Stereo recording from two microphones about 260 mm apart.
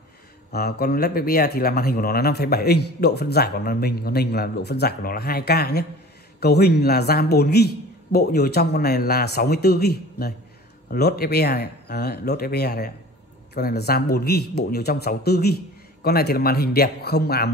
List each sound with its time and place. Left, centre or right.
0.5 s speech: left